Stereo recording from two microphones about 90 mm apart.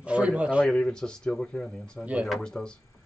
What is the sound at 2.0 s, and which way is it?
Speech, 15° right (ahead or behind).